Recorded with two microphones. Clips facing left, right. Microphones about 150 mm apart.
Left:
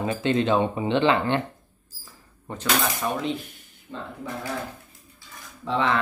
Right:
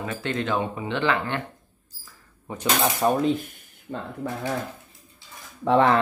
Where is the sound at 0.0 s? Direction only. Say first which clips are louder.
Left 5 dB; 20° left (ahead or behind).